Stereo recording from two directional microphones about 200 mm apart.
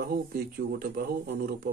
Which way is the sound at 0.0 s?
50° right (ahead or behind).